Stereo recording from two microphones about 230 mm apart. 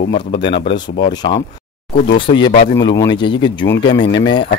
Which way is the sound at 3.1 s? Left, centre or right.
Left.